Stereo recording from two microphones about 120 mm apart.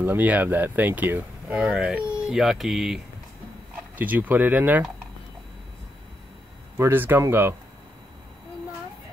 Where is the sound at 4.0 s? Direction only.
15° right (ahead or behind).